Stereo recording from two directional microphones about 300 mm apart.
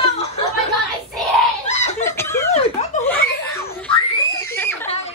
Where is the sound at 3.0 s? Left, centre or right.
Centre.